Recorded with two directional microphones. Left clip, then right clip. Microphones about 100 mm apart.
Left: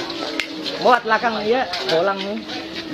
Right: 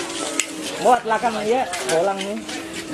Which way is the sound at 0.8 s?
20° left (ahead or behind).